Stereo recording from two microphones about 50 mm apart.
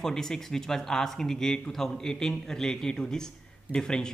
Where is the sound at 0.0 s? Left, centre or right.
Centre.